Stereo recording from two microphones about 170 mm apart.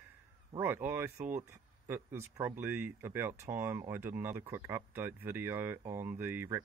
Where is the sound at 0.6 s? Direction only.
10° right (ahead or behind).